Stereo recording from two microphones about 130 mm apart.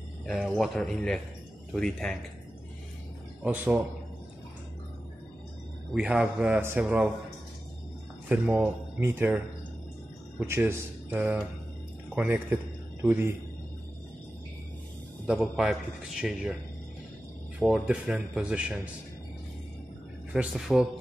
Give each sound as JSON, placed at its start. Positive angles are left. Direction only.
{"t": 0.3, "sound": "a man's voice", "side_deg": 0}
{"t": 3.4, "sound": "speech", "side_deg": -15}
{"t": 5.9, "sound": "speech", "side_deg": -10}
{"t": 8.3, "sound": "speech", "side_deg": -15}
{"t": 10.4, "sound": "a man's voice", "side_deg": -20}
{"t": 15.3, "sound": "a man's voice", "side_deg": 0}
{"t": 17.6, "sound": "speech", "side_deg": -10}
{"t": 20.3, "sound": "a man's voice", "side_deg": -5}